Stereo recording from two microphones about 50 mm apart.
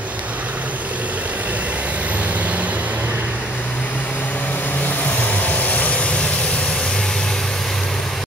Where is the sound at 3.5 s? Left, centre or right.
Left; by 8.2 s centre.